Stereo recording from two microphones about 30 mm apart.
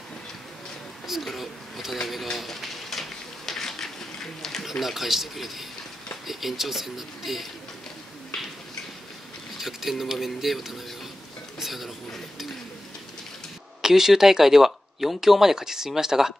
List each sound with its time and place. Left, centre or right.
1.0 s speech: centre
2.3 s a sound: centre
4.6 s speech: centre
9.6 s speech: centre
11.6 s pigeon: centre
13.7 s speech: centre